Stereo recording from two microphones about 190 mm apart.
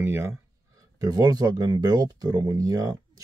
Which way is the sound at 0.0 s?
15° right (ahead or behind).